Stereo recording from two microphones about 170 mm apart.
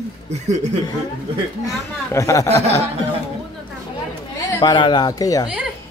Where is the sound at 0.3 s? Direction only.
40° right (ahead or behind).